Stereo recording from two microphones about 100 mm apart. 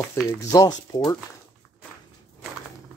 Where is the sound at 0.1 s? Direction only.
30° left (ahead or behind).